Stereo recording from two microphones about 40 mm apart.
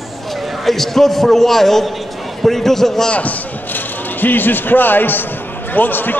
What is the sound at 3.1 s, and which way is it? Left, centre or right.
A man's voice, left.